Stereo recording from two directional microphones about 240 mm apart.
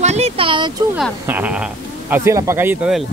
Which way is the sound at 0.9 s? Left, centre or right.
Centre.